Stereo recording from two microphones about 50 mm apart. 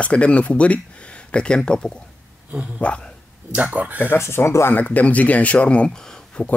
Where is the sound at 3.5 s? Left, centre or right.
Right.